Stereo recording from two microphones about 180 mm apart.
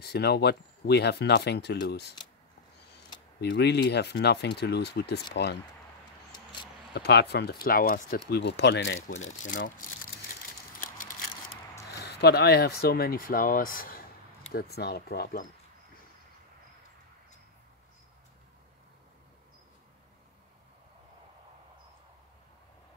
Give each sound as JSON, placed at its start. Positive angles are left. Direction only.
{"t": 0.0, "sound": "speech", "side_deg": 65}
{"t": 3.3, "sound": "speech", "side_deg": 70}
{"t": 6.9, "sound": "speech", "side_deg": 65}
{"t": 7.6, "sound": "speech", "side_deg": 55}
{"t": 8.3, "sound": "speech", "side_deg": 65}
{"t": 9.2, "sound": "speech", "side_deg": 45}
{"t": 9.7, "sound": "crumpling", "side_deg": 50}
{"t": 10.8, "sound": "a sound", "side_deg": 50}
{"t": 11.9, "sound": "speech", "side_deg": 65}